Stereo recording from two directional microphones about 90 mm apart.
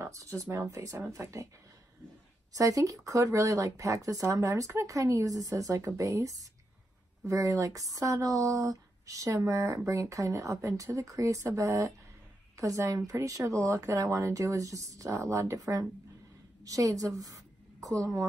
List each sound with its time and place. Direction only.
0.0 s speech: 35° right (ahead or behind)
2.5 s a woman's voice: 40° right (ahead or behind)